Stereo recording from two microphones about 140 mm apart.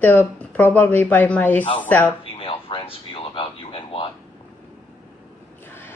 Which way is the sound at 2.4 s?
40° left (ahead or behind).